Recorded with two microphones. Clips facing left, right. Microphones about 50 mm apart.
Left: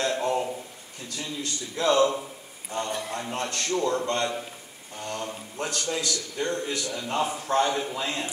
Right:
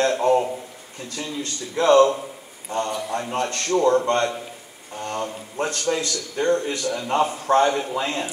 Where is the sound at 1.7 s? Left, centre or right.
Right.